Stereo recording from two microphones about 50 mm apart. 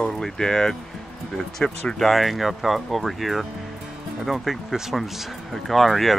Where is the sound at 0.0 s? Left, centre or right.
Centre.